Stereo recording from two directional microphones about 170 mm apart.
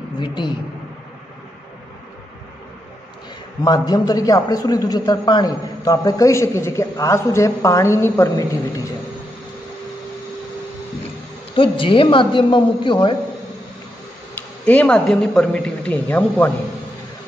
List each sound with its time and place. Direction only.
0.2 s a man's voice: 30° left (ahead or behind)
3.6 s a man's voice: 25° left (ahead or behind)
11.5 s a man's voice: 30° left (ahead or behind)
14.3 s speech: 10° left (ahead or behind)